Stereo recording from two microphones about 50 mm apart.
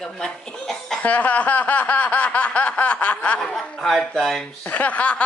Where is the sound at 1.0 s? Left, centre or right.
Left.